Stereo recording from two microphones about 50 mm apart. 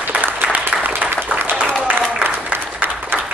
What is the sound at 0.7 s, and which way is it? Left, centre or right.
Applause, right.